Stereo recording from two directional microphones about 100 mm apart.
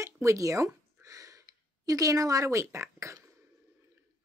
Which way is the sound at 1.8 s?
35° right (ahead or behind).